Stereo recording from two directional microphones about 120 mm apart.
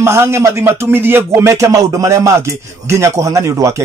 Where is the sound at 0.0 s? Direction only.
20° right (ahead or behind).